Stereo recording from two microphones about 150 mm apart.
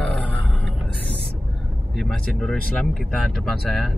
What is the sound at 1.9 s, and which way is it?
Speech, centre (ahead or behind).